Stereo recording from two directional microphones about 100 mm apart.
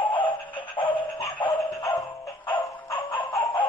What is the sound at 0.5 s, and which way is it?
Music, 55° left (ahead or behind).